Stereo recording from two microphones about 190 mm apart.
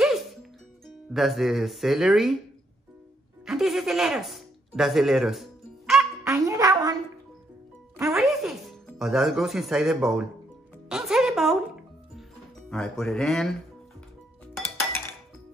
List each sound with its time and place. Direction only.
0.0 s music: centre (ahead or behind)
3.4 s speech: centre (ahead or behind)
6.2 s a sound: 15° right (ahead or behind)
8.1 s music: centre (ahead or behind)
12.6 s speech: centre (ahead or behind)